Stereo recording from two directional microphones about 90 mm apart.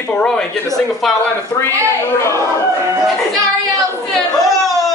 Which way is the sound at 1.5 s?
30° left (ahead or behind).